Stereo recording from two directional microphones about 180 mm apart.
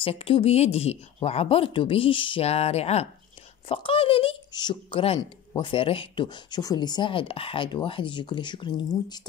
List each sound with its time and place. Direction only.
0.0 s speech: 30° left (ahead or behind)